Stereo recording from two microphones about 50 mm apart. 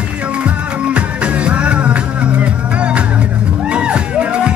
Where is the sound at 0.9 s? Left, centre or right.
Right.